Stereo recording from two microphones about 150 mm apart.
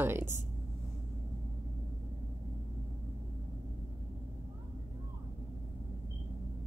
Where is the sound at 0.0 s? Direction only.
15° right (ahead or behind).